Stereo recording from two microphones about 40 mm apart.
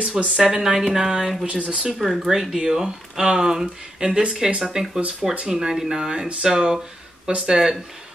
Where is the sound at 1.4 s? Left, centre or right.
Right.